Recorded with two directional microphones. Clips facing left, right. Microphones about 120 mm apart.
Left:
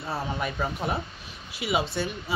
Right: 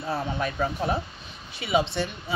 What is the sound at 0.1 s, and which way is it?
Speech, centre (ahead or behind).